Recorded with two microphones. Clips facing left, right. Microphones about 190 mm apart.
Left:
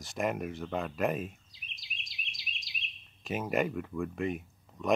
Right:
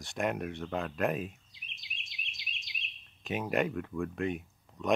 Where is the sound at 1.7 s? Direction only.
35° left (ahead or behind).